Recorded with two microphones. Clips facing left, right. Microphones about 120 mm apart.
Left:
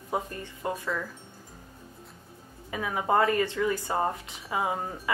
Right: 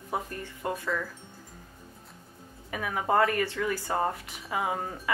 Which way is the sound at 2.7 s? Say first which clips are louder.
Left 1 dB; 20° left (ahead or behind).